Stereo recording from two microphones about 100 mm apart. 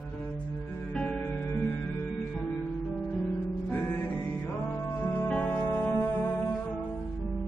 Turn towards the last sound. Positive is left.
turn(degrees=20)  # may be behind; listen again after turning